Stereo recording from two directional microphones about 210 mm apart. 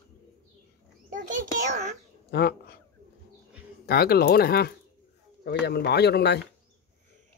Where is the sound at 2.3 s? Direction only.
50° left (ahead or behind).